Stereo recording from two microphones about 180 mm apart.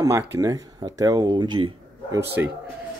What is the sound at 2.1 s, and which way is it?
Speech, 10° right (ahead or behind).